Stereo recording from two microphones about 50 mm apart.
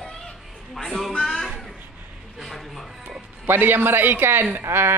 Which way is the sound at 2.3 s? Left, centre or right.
Centre.